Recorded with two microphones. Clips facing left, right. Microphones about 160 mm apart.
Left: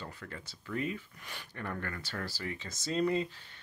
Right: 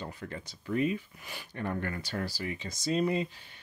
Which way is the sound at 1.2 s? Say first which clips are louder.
Right 2 dB; 5° right (ahead or behind).